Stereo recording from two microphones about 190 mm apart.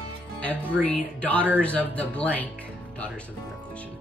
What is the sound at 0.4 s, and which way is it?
Speech, 5° left (ahead or behind).